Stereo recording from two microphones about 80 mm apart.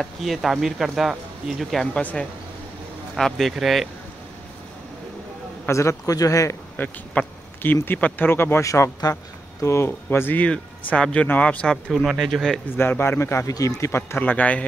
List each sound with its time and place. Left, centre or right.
0.0 s speech: centre
2.0 s speech: centre
3.2 s speech: centre
5.7 s a man's voice: left
6.8 s speech: left
10.9 s speech: centre
12.7 s speech: left
13.5 s a man's voice: left
14.1 s speech: left